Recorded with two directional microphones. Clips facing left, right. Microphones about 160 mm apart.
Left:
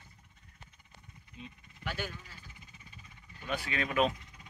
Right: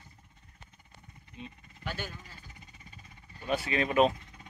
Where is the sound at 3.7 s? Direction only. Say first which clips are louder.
Right 5 dB; 35° right (ahead or behind).